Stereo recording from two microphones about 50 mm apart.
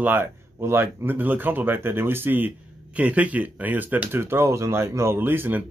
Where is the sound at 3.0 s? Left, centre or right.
Right.